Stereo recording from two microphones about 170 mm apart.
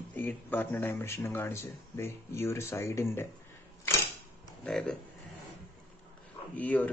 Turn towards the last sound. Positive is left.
turn(degrees=10)  # may be behind; listen again after turning